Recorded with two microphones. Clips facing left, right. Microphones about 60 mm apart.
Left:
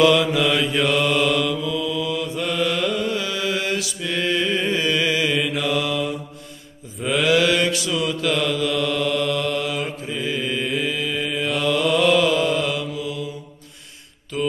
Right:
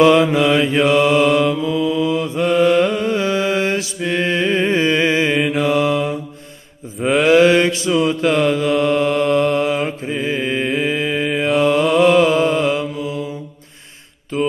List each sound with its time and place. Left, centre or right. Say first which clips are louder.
0.0 s mantra: right 5 dB; right
1.0 s mantra: right 6 dB; centre
1.4 s mantra: right 6 dB; right
7.0 s mantra: right 6 dB; centre
7.2 s mantra: right 7 dB; right
11.6 s mantra: right 5 dB; right
14.3 s mantra: right 5 dB; right